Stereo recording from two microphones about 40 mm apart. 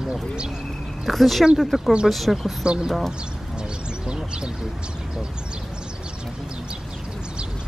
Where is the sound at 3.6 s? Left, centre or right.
Right.